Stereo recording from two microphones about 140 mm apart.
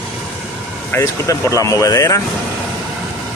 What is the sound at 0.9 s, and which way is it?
A man's voice, 20° left (ahead or behind).